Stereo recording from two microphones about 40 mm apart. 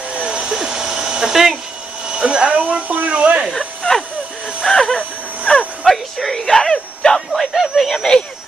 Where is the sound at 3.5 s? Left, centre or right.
Centre.